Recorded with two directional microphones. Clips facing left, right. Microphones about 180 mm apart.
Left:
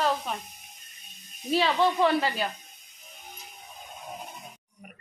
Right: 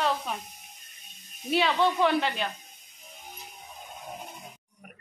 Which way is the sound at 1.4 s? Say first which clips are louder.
Left 1 dB; centre (ahead or behind).